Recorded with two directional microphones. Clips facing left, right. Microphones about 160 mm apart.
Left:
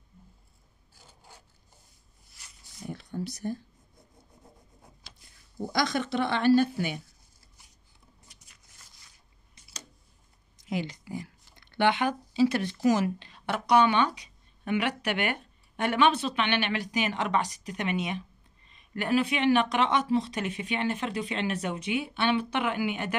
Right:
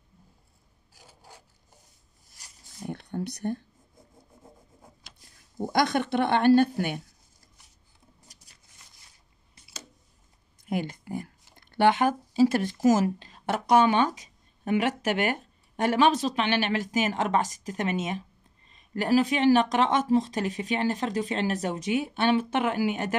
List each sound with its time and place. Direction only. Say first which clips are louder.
0.9 s filing: right 3 dB; 10° right (ahead or behind)
2.9 s speech: right 2 dB; 60° right (ahead or behind)
5.7 s speech: right 4 dB; 55° right (ahead or behind)
8.3 s a sound: right 1 dB; 40° right (ahead or behind)
10.6 s speech: right 2 dB; 50° right (ahead or behind)